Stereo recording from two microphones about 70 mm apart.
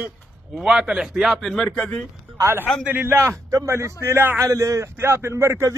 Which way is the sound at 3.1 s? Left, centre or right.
Right.